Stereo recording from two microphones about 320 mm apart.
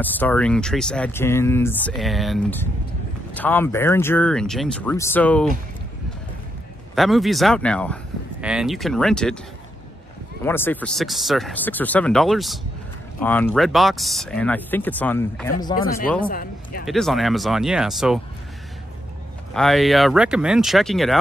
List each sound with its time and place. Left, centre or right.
0.0 s speech: centre
7.0 s speech: centre
10.4 s speech: centre
16.3 s speech: left
16.8 s speech: centre
19.5 s speech: centre